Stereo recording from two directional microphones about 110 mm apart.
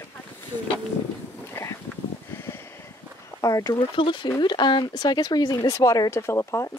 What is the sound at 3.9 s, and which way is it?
Speech, 50° left (ahead or behind).